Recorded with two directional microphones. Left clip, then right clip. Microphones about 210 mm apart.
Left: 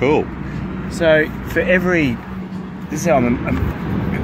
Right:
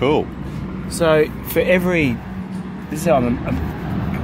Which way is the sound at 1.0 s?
45° right (ahead or behind).